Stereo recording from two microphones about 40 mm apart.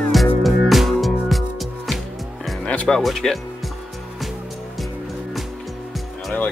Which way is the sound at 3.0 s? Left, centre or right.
Centre.